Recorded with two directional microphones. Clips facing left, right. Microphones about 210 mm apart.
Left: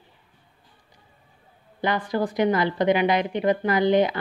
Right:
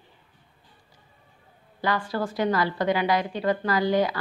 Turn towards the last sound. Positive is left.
turn(degrees=20)  # may be behind; listen again after turning